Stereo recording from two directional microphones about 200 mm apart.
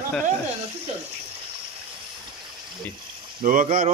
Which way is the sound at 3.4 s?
40° right (ahead or behind).